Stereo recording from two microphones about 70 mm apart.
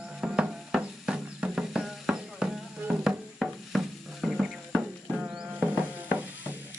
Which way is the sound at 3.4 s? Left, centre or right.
Centre.